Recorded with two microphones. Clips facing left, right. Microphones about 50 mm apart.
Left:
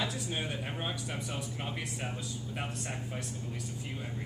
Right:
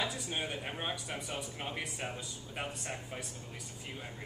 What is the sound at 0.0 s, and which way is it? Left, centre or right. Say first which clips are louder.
Speech: left 1 dB; centre.